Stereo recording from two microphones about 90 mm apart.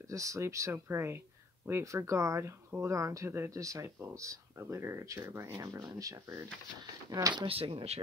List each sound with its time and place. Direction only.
0.1 s speech: 35° right (ahead or behind)
7.4 s speech: 90° right